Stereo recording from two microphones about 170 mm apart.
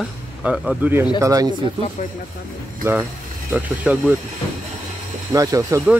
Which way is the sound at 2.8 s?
10° right (ahead or behind).